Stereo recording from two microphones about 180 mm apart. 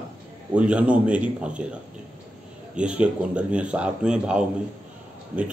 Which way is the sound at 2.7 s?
5° right (ahead or behind).